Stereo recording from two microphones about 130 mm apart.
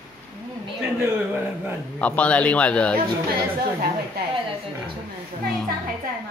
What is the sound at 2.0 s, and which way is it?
Speech, 10° left (ahead or behind).